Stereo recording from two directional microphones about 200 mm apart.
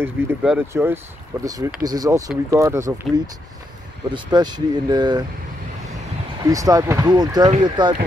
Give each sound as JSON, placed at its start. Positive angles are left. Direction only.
{"t": 0.0, "sound": "speech", "side_deg": -10}
{"t": 4.1, "sound": "speech", "side_deg": -20}
{"t": 6.4, "sound": "speech", "side_deg": -15}